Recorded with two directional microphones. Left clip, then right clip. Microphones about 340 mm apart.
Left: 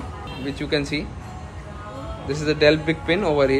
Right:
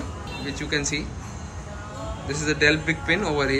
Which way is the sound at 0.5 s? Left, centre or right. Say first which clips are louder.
Left 2 dB; centre.